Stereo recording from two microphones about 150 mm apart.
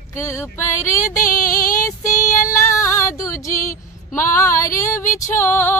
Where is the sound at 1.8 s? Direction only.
20° left (ahead or behind).